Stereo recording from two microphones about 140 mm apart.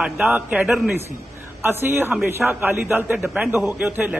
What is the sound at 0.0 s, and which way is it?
A man's voice, 15° right (ahead or behind).